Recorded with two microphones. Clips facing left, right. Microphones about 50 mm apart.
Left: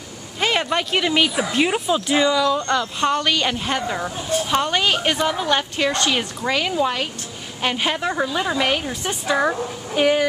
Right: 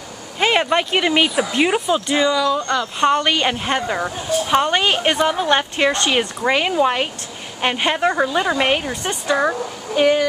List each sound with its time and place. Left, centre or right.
0.4 s a woman's voice: centre
3.0 s a woman's voice: centre
9.1 s speech: centre